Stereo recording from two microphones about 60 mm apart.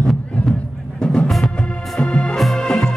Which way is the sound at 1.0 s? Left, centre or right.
Centre.